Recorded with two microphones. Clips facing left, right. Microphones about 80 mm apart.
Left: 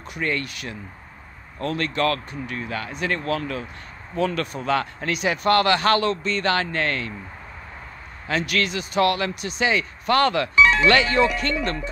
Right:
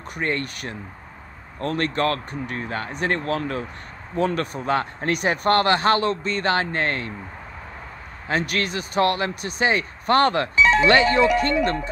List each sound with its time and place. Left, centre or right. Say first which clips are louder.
0.1 s speech: right 1 dB; right
5.1 s speech: even; right
8.3 s speech: even; right